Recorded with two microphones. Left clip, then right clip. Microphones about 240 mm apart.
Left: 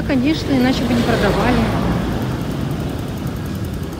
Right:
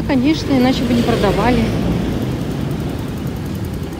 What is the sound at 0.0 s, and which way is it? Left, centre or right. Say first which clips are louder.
Speech: right 2 dB; centre.